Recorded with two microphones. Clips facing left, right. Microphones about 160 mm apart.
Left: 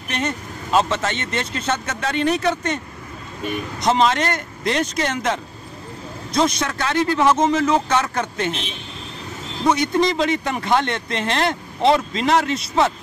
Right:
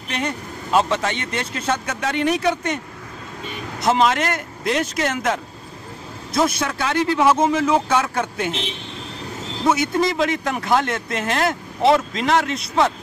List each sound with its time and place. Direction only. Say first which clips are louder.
0.1 s speech: left 1 dB; 10° right (ahead or behind)
3.8 s speech: even; 5° right (ahead or behind)
9.7 s speech: left 1 dB; 5° right (ahead or behind)